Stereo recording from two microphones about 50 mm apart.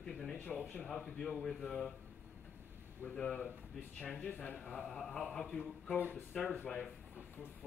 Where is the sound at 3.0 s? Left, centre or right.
Left.